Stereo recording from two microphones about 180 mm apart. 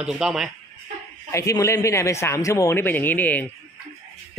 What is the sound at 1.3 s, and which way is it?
Speech, 15° left (ahead or behind).